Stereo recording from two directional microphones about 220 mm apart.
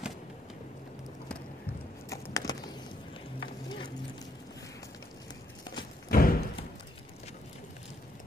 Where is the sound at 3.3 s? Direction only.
20° left (ahead or behind).